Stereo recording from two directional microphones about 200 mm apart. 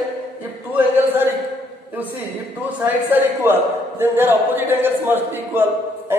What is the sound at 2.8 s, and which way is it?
A man's voice, 10° right (ahead or behind).